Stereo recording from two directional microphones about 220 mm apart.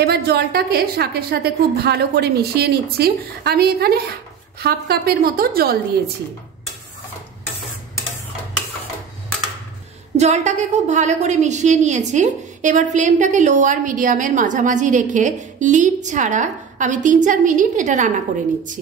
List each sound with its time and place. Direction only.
0.0 s a woman's voice: 45° right (ahead or behind)
10.1 s a woman's voice: 30° right (ahead or behind)